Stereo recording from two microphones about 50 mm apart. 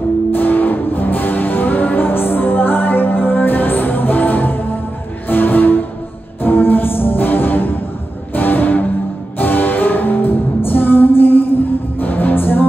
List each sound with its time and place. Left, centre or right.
0.3 s music: left